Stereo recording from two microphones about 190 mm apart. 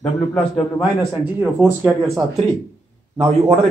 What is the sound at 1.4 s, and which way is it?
Speech, 10° right (ahead or behind).